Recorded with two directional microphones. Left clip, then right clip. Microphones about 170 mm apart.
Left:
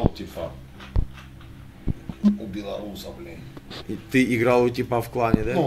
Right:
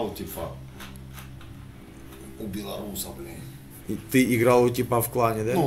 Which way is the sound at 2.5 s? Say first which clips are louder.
Left 3 dB; 40° left (ahead or behind).